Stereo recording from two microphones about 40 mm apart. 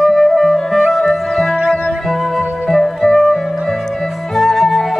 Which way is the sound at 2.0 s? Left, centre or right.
Centre.